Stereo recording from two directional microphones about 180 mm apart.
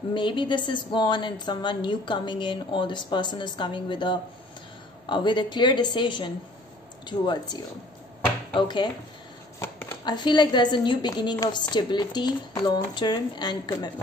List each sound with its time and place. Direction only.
0.1 s a woman's voice: 25° left (ahead or behind)
8.5 s a woman's voice: 25° left (ahead or behind)
9.6 s a sound: 15° left (ahead or behind)
10.0 s a woman's voice: 25° left (ahead or behind)